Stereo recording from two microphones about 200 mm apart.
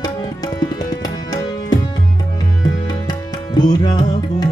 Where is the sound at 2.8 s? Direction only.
20° left (ahead or behind).